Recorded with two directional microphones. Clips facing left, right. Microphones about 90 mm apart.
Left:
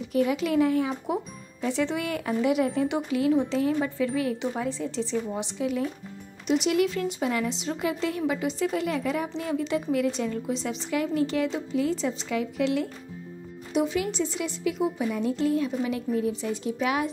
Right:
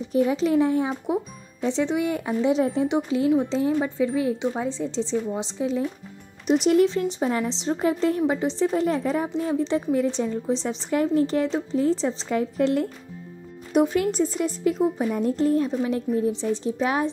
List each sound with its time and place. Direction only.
0.1 s speech: 30° right (ahead or behind)
6.4 s a woman's voice: 40° right (ahead or behind)